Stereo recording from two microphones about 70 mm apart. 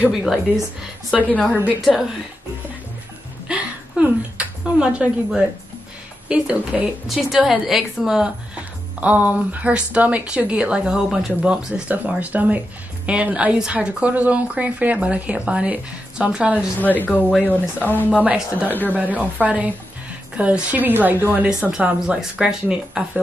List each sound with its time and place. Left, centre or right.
0.1 s a woman's voice: centre
1.5 s speech: right
1.8 s a woman's voice: centre
3.4 s a sound: centre
6.2 s speech: centre
7.1 s a woman's voice: centre
9.0 s speech: right
16.5 s a woman's voice: left
18.1 s speech: right
18.7 s a woman's voice: left
19.4 s speech: right
21.5 s speech: centre